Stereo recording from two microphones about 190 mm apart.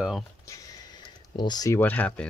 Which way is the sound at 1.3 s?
20° left (ahead or behind).